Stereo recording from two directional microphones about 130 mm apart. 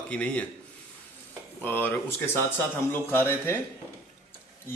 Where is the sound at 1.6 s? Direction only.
15° left (ahead or behind).